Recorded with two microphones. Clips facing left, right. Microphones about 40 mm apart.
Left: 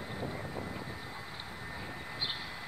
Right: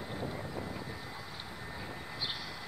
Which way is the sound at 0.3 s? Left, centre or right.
Centre.